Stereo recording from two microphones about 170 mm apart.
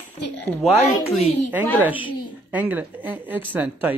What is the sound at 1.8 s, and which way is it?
A woman's voice, 10° right (ahead or behind).